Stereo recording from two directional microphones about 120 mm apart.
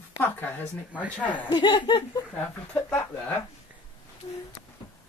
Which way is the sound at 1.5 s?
40° left (ahead or behind).